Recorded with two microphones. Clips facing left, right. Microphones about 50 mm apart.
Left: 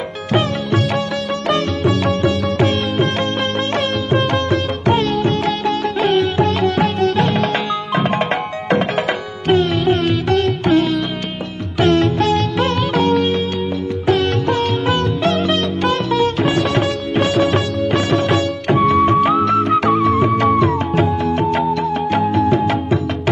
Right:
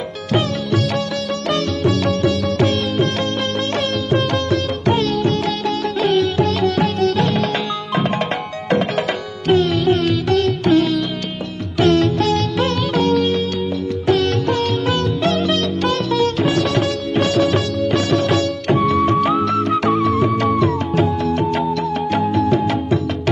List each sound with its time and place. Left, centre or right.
1.5 s music: centre